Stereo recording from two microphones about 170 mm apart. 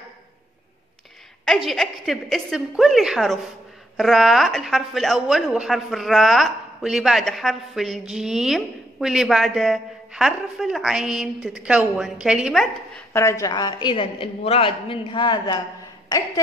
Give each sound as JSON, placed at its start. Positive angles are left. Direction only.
{"t": 1.4, "sound": "a woman's voice", "side_deg": 0}
{"t": 13.1, "sound": "a woman's voice", "side_deg": 15}